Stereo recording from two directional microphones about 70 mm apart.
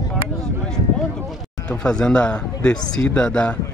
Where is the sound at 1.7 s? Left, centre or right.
Centre.